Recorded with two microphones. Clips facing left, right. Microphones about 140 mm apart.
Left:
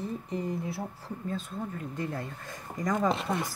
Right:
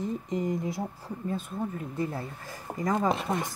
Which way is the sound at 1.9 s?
10° right (ahead or behind).